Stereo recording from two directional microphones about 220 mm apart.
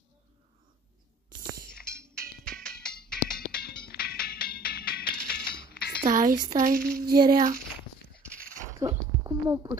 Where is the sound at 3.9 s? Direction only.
45° left (ahead or behind).